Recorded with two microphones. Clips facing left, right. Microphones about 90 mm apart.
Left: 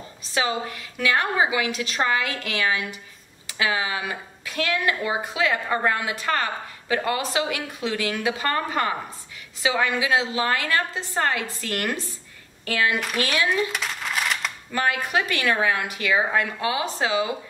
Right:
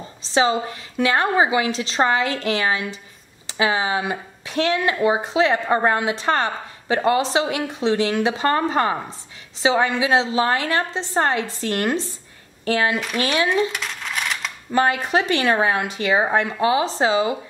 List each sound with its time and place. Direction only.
0.2 s speech: 25° right (ahead or behind)
13.7 s coin: centre (ahead or behind)
14.7 s speech: 25° right (ahead or behind)